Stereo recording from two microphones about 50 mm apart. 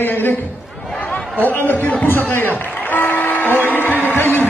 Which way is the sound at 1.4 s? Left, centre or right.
Left.